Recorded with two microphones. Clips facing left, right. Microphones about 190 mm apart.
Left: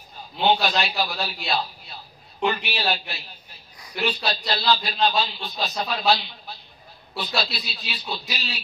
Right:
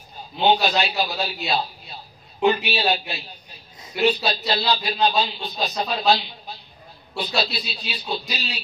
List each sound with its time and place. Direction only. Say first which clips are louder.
0.4 s a man's voice: right 2 dB; 15° right (ahead or behind)
7.2 s a man's voice: right 3 dB; 15° right (ahead or behind)